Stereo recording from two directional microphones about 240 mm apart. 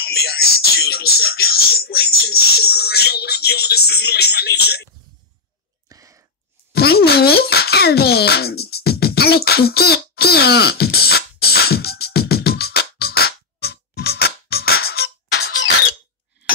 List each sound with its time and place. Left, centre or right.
0.0 s music: left
5.9 s a sound: centre
6.7 s music: left